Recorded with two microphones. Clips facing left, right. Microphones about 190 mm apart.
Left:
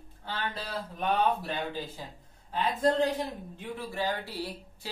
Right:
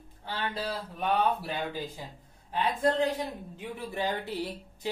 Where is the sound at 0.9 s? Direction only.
10° right (ahead or behind).